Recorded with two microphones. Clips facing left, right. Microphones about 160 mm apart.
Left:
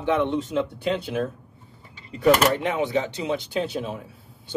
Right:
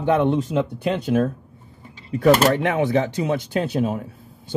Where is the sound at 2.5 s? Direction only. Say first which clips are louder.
Right 4 dB; 55° right (ahead or behind).